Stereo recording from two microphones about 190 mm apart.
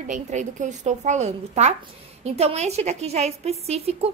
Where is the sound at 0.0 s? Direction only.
40° right (ahead or behind).